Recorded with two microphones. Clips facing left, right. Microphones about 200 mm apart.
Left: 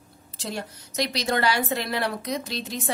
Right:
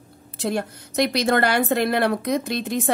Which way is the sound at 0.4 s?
55° right (ahead or behind).